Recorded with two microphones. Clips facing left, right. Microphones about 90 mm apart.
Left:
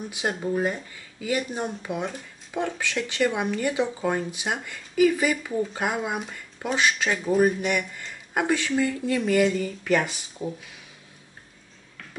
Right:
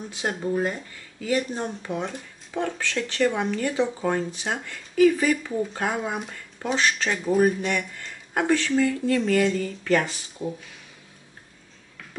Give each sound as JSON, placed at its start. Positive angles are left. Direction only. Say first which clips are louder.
{"t": 0.1, "sound": "speech", "louder": "right 1 dB", "side_deg": 5}